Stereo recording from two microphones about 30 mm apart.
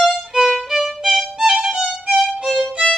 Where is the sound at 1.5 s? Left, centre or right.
Right.